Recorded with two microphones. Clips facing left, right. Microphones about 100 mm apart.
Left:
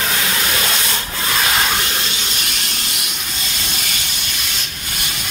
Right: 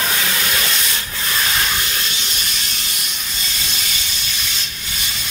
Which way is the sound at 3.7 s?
55° left (ahead or behind).